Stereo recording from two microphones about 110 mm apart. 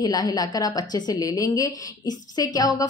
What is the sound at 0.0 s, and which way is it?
Speech, 35° left (ahead or behind).